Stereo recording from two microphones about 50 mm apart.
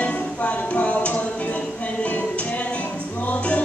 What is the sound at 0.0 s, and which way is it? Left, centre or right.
Music, left.